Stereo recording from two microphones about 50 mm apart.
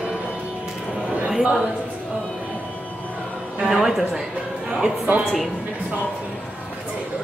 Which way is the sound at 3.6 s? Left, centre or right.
Centre.